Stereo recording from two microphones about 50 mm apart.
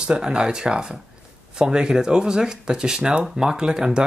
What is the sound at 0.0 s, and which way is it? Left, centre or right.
Speech, centre.